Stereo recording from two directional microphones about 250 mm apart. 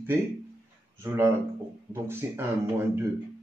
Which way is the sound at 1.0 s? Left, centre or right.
Centre.